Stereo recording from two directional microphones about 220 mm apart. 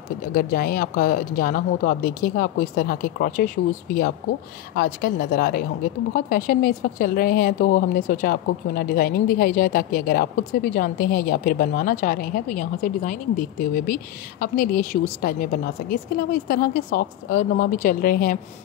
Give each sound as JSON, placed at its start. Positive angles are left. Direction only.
{"t": 0.3, "sound": "a woman's voice", "side_deg": 40}